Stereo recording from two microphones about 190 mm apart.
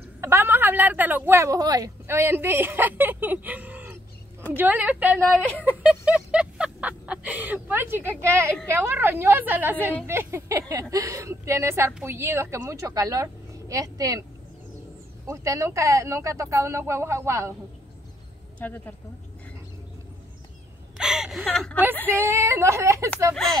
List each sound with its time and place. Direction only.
0.2 s speech: 15° right (ahead or behind)
5.7 s music: 5° right (ahead or behind)
8.7 s speech: 10° right (ahead or behind)
15.2 s speech: 15° right (ahead or behind)
18.6 s speech: 10° left (ahead or behind)
21.0 s speech: centre (ahead or behind)
22.0 s speech: 10° right (ahead or behind)
23.3 s speech: centre (ahead or behind)